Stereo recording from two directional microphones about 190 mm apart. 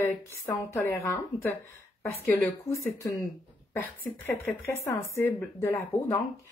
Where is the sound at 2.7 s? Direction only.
15° left (ahead or behind).